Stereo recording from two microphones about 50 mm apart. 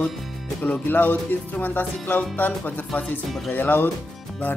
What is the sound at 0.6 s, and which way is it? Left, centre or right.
Speech, left.